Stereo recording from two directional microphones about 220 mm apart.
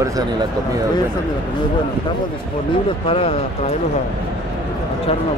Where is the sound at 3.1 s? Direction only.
25° left (ahead or behind).